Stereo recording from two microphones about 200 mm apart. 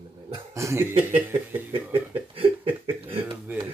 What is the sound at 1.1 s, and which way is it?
Speech, 10° right (ahead or behind).